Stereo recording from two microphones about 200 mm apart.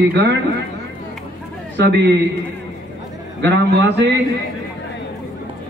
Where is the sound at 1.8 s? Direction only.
60° right (ahead or behind).